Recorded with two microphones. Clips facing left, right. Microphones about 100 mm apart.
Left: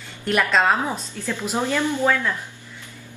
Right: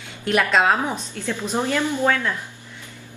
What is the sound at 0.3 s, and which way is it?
A woman's voice, centre (ahead or behind).